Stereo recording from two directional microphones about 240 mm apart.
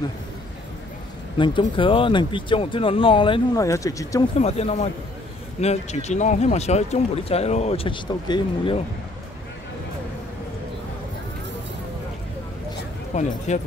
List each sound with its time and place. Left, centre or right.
1.4 s speech: centre
4.4 s speech: left
13.1 s speech: left